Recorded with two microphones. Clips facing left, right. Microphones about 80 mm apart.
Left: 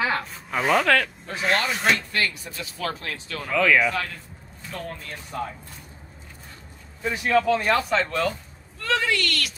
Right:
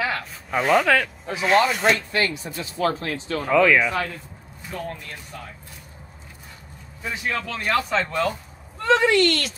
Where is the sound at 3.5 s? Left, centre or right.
Centre.